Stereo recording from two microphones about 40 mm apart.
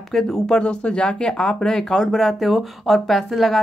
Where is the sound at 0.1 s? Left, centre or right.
Centre.